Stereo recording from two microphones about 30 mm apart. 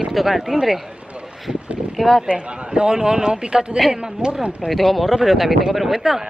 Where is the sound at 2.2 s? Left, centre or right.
Right.